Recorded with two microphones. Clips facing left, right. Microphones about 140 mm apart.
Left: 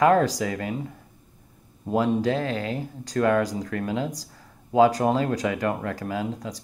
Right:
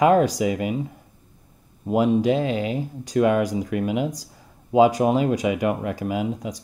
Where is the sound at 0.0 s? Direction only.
15° right (ahead or behind).